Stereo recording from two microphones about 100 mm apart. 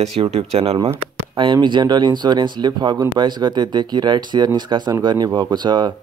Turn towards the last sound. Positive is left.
turn(degrees=-45)  # may be behind; listen again after turning